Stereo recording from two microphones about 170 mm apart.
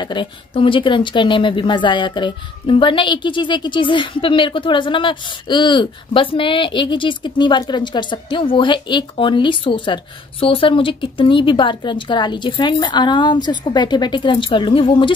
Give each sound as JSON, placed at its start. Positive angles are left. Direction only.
{"t": 0.0, "sound": "speech", "side_deg": 25}